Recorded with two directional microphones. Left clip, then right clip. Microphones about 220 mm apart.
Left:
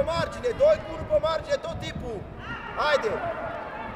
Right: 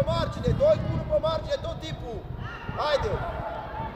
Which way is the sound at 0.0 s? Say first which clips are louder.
Left 1 dB; 40° left (ahead or behind).